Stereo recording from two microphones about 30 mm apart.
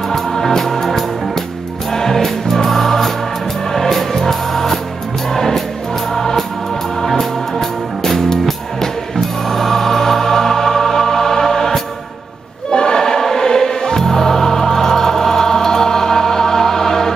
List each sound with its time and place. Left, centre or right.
0.1 s music: centre